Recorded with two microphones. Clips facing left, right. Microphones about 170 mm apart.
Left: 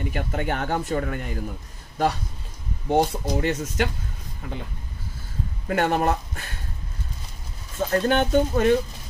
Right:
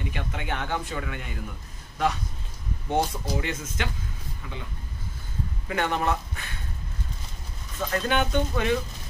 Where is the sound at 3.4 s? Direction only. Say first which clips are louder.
Left 7 dB; 40° left (ahead or behind).